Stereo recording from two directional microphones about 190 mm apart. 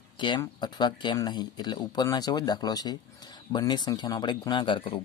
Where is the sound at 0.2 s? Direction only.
25° left (ahead or behind).